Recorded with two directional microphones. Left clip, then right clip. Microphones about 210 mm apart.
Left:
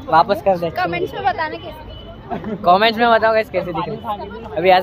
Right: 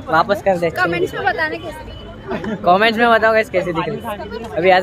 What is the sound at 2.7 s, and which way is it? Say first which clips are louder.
Speech: even; 5° right (ahead or behind).